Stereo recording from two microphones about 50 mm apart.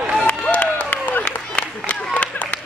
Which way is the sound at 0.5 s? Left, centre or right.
Left.